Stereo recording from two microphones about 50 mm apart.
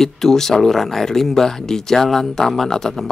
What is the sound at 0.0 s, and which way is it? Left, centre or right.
Speech, centre.